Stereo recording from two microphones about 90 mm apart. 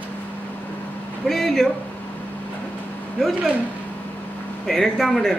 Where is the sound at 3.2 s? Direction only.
5° left (ahead or behind).